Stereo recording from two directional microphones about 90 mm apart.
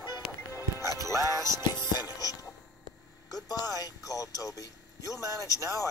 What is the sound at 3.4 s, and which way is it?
Speech, 45° left (ahead or behind).